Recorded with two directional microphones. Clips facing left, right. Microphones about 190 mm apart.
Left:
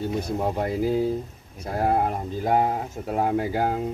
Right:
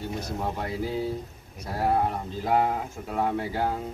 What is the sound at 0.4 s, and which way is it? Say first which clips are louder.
Speech: left 5 dB; 45° left (ahead or behind).